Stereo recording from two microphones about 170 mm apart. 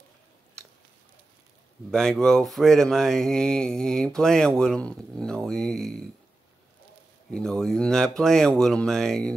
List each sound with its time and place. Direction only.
1.9 s speech: 5° left (ahead or behind)
7.2 s speech: 5° left (ahead or behind)